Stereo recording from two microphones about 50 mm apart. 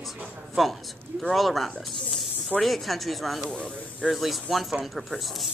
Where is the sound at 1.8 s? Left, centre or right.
Centre.